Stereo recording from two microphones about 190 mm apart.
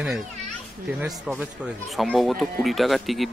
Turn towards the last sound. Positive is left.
turn(degrees=0)  # may be behind; listen again after turning